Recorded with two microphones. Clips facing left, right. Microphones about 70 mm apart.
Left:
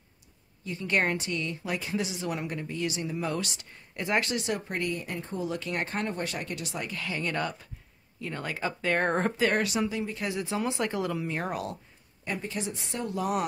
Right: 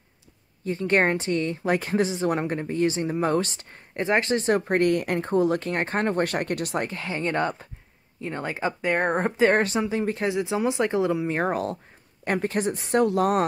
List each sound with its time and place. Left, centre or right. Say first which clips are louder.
0.7 s speech: right 6 dB; right
6.9 s speech: right 5 dB; right
9.5 s speech: right 5 dB; right
11.3 s speech: right 7 dB; right
12.3 s a woman's voice: right 9 dB; right
13.0 s speech: right 9 dB; right